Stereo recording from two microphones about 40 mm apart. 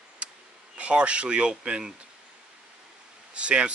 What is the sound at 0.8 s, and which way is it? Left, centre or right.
Speech, right.